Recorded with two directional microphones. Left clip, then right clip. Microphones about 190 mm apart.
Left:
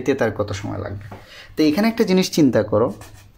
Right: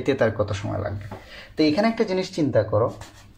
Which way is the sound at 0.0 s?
20° left (ahead or behind).